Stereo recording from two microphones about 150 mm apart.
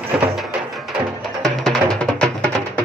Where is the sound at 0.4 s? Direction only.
Centre (ahead or behind).